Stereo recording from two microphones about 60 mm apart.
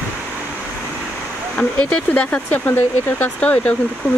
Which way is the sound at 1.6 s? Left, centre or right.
Left.